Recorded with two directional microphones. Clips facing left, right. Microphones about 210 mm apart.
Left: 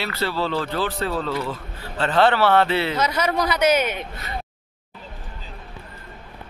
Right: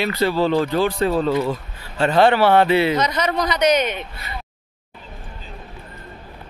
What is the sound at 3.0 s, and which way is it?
A man's voice, 10° left (ahead or behind).